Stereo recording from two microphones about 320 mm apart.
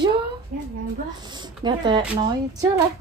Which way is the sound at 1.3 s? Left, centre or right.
Centre.